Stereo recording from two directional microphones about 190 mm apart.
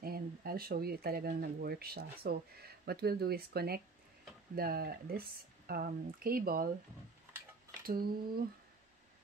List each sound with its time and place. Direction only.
0.0 s speech: 50° right (ahead or behind)
7.8 s speech: 50° right (ahead or behind)